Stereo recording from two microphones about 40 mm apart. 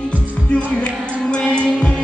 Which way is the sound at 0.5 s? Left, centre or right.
Left.